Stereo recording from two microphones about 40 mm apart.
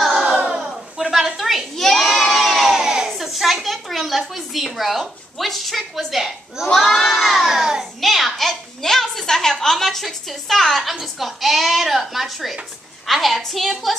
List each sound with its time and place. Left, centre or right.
0.6 s a sound: centre
1.8 s children shouting: centre
2.2 s crowd: centre
2.8 s crowd: centre
3.1 s a sound: centre
4.7 s a woman's voice: centre
6.7 s a child's voice: centre
7.5 s a child's voice: centre
8.0 s a child's voice: centre